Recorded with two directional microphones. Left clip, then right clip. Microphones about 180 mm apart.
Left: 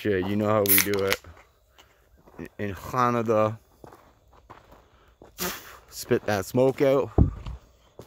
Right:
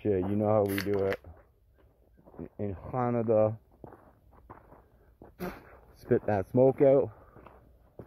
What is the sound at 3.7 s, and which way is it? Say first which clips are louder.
Walk: left 2 dB; 40° right (ahead or behind).